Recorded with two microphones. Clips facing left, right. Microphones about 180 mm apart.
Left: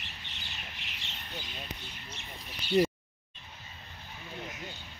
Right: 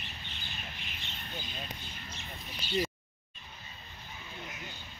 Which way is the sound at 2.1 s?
60° left (ahead or behind).